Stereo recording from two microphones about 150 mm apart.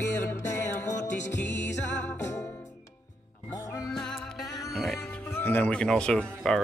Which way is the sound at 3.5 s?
20° left (ahead or behind).